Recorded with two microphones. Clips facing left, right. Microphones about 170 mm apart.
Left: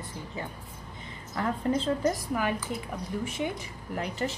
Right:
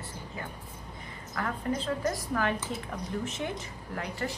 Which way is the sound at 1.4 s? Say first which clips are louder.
Left 4 dB; 25° left (ahead or behind).